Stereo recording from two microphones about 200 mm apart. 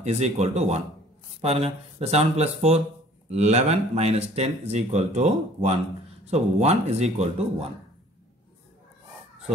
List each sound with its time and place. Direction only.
0.0 s speech: 35° right (ahead or behind)